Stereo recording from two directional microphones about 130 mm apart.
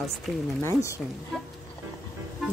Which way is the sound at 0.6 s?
20° left (ahead or behind).